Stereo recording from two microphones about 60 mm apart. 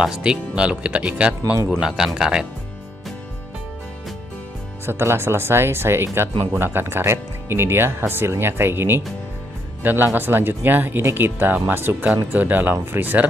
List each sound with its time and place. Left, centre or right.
0.0 s speech: centre
1.8 s speech: centre
4.8 s speech: right